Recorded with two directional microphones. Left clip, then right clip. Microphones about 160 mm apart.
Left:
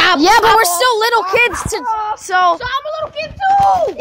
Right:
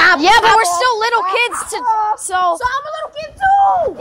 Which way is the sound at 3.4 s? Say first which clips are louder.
Even; 15° left (ahead or behind).